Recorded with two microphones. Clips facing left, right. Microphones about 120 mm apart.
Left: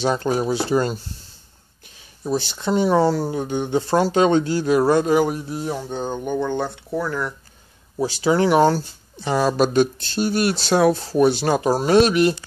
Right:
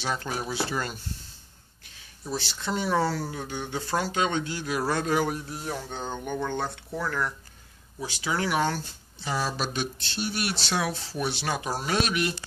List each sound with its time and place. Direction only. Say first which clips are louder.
0.0 s speech: left 11 dB; 35° left (ahead or behind)
2.3 s speech: left 9 dB; 20° left (ahead or behind)
8.0 s speech: left 11 dB; 35° left (ahead or behind)
9.3 s speech: left 11 dB; 50° left (ahead or behind); by 12.4 s 35° left (ahead or behind)